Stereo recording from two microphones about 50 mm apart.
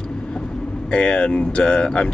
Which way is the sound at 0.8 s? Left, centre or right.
Centre.